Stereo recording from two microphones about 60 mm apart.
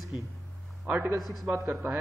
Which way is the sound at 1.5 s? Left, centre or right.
Right.